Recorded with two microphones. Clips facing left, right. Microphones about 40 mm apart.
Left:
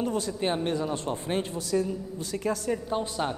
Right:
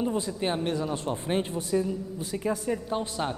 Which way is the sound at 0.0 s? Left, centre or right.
Centre.